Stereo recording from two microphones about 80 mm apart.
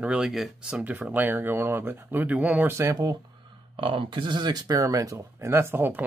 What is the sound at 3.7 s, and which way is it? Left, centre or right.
Speech, right.